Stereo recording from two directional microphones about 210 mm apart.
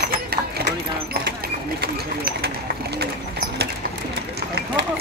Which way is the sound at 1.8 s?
50° right (ahead or behind).